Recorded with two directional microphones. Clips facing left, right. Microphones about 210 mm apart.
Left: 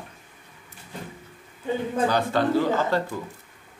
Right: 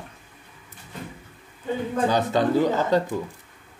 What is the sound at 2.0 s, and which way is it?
Speech, 20° right (ahead or behind).